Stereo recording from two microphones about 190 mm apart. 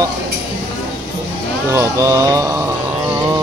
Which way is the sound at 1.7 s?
15° right (ahead or behind).